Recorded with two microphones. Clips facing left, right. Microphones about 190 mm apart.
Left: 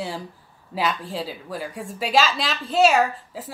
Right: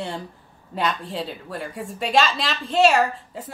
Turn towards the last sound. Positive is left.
turn(degrees=0)  # may be behind; listen again after turning